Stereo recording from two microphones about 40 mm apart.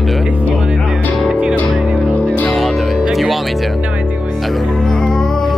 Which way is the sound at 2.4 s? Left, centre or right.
Centre.